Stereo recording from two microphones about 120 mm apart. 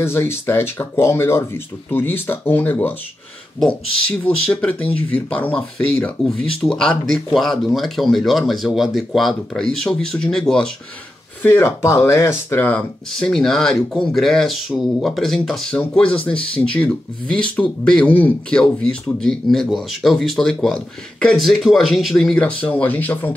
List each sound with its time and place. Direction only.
0.0 s speech: 20° left (ahead or behind)
4.5 s speech: 10° left (ahead or behind)
11.4 s speech: 20° left (ahead or behind)